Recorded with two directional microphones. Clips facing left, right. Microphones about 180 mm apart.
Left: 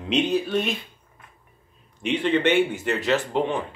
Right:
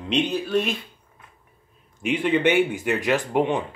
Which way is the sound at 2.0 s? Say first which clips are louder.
Right 1 dB; 10° right (ahead or behind).